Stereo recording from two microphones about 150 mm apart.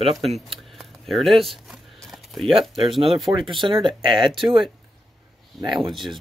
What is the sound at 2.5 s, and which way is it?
Speech, 35° right (ahead or behind).